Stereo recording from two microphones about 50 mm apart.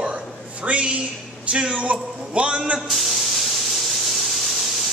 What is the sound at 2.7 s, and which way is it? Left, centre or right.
Speech, centre.